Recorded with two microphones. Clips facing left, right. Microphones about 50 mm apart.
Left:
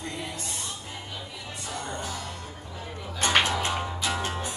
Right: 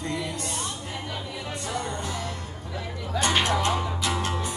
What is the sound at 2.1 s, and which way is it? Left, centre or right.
Music, right.